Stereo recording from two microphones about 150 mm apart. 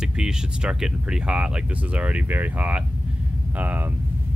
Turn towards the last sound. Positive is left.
turn(degrees=-10)  # may be behind; listen again after turning